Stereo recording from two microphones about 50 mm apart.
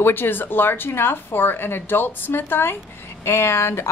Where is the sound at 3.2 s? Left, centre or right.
Left.